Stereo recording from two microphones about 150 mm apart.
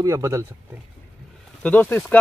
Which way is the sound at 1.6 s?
10° left (ahead or behind).